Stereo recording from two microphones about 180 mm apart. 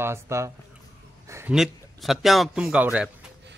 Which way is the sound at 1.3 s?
15° right (ahead or behind).